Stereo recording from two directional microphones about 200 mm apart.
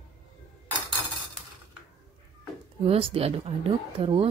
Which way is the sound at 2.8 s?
30° right (ahead or behind).